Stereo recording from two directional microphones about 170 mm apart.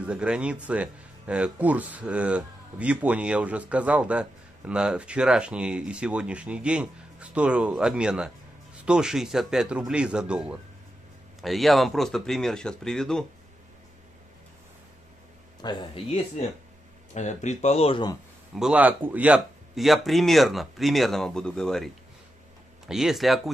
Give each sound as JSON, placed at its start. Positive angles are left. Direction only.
{"t": 0.0, "sound": "speech", "side_deg": -5}
{"t": 15.6, "sound": "speech", "side_deg": 25}
{"t": 17.1, "sound": "speech", "side_deg": 45}
{"t": 18.5, "sound": "speech", "side_deg": -5}